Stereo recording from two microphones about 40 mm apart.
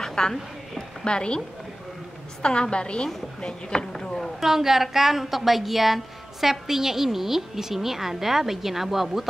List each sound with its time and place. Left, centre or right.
0.0 s speech: centre
1.0 s a woman's voice: left
2.4 s a woman's voice: left
4.2 s a woman's voice: centre